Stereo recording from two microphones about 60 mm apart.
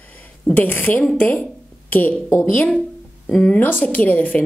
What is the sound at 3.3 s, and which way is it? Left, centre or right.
Speech, centre.